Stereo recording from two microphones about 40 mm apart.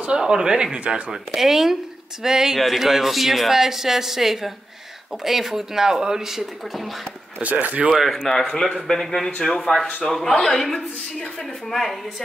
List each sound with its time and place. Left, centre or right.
0.3 s speech: centre
0.7 s speech: right
1.1 s speech: centre
7.6 s speech: right
7.9 s a man's voice: centre
11.7 s speech: centre